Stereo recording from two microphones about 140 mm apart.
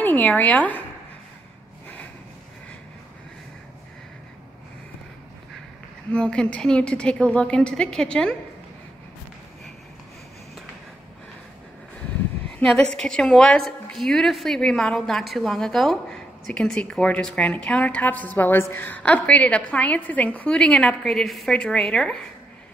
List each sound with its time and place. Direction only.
0.0 s a woman's voice: 10° left (ahead or behind)
6.1 s a woman's voice: 5° left (ahead or behind)
12.5 s a woman's voice: 5° left (ahead or behind)